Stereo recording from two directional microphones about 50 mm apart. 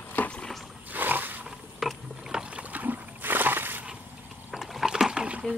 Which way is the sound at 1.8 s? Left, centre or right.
Centre.